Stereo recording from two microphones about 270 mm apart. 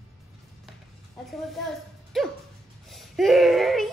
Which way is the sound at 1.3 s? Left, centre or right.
Centre.